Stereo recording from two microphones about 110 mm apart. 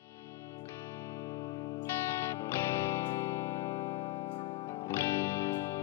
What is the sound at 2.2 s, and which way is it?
Music, 25° left (ahead or behind).